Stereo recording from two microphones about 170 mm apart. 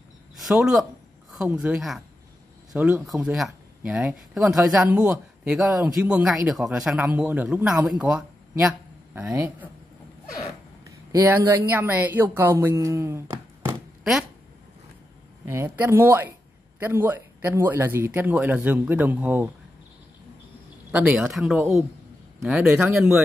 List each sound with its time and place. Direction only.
0.4 s speech: centre (ahead or behind)
11.1 s speech: 15° right (ahead or behind)
15.4 s speech: 15° right (ahead or behind)
20.9 s speech: 5° right (ahead or behind)